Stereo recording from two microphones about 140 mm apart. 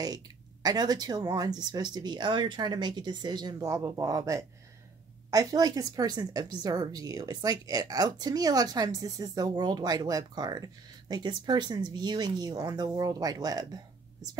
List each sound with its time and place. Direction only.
0.0 s a woman's voice: 30° right (ahead or behind)